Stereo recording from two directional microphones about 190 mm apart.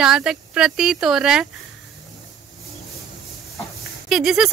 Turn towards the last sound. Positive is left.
turn(degrees=-5)  # may be behind; listen again after turning